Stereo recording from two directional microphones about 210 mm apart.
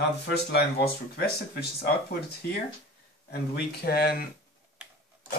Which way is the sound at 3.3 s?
50° left (ahead or behind).